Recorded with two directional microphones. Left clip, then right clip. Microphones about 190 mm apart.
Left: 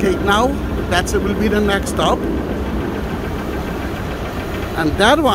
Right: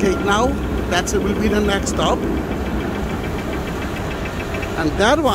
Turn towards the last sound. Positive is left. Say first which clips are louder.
# left 3 dB
turn(degrees=10)  # may be behind; listen again after turning